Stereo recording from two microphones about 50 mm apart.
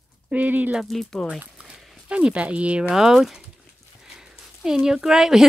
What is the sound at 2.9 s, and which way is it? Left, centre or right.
Speech, centre.